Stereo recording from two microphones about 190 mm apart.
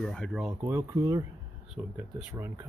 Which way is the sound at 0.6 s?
15° right (ahead or behind).